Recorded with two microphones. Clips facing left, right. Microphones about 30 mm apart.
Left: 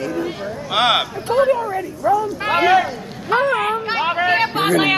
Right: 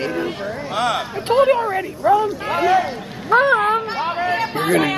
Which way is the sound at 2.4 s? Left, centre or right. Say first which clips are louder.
Left 2 dB; left.